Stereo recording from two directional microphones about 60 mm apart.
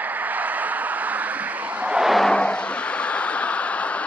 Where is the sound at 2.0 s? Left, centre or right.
Centre.